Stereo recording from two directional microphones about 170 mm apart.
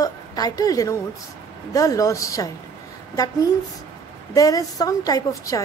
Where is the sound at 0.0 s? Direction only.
20° left (ahead or behind).